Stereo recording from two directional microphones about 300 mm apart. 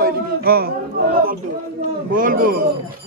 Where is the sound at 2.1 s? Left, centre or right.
Right.